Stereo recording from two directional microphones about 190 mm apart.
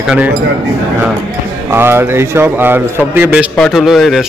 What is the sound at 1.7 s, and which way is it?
A man's voice, 10° right (ahead or behind).